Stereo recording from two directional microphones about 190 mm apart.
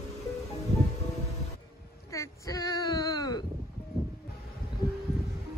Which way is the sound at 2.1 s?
15° left (ahead or behind).